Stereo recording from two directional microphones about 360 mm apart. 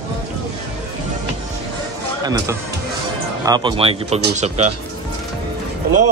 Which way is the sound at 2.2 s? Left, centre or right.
Centre.